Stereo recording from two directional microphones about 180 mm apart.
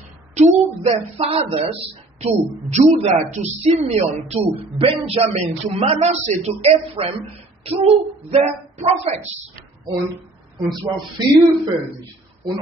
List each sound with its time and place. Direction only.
0.3 s a sound: 40° right (ahead or behind)
0.8 s a woman's voice: 30° right (ahead or behind)
10.7 s speech: 25° right (ahead or behind)